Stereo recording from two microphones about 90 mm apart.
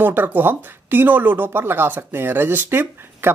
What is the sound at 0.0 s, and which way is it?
Speech, 20° right (ahead or behind).